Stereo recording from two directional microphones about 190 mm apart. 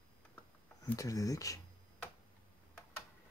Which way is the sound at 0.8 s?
15° left (ahead or behind).